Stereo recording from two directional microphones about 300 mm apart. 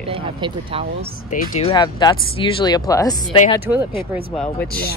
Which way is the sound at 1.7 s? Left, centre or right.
Centre.